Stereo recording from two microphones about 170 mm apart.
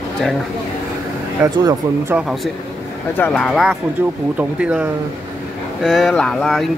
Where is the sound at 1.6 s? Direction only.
20° right (ahead or behind).